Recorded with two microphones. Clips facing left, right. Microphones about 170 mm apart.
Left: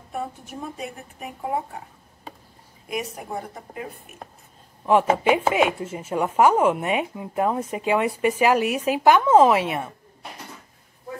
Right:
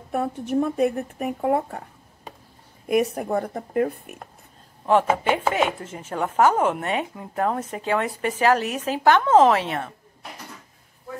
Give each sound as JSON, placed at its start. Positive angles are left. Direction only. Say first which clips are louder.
{"t": 0.1, "sound": "speech", "louder": "right 8 dB", "side_deg": -60}
{"t": 2.9, "sound": "speech", "louder": "right 9 dB", "side_deg": -55}
{"t": 4.8, "sound": "chopping", "louder": "left 1 dB", "side_deg": 5}